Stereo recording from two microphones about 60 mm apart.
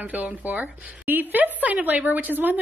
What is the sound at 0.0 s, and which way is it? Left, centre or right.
Speech, right.